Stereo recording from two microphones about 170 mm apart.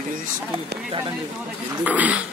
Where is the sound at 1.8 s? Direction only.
10° right (ahead or behind).